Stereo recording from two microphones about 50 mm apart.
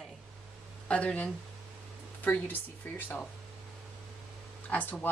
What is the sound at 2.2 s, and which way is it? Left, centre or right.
Speech, left.